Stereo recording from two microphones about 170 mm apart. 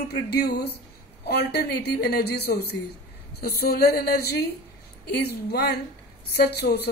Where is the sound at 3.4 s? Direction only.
65° left (ahead or behind).